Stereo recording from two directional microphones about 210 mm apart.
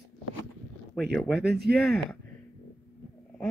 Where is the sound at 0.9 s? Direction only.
Centre (ahead or behind).